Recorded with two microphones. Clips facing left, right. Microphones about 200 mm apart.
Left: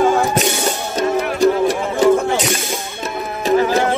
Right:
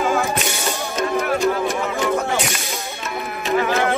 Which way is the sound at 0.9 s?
35° left (ahead or behind).